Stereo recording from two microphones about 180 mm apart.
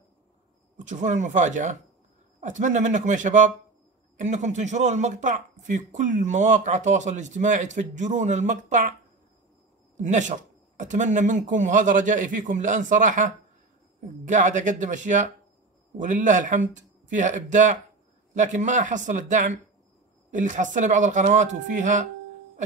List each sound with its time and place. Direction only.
0.7 s speech: 45° right (ahead or behind)
9.9 s speech: 40° right (ahead or behind)